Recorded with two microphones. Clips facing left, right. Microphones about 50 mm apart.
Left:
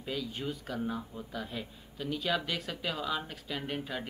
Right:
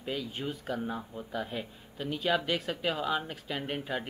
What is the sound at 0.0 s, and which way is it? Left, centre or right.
Speech, centre.